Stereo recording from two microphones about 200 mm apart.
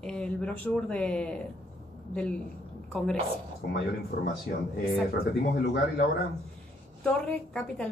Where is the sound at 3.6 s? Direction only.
50° left (ahead or behind).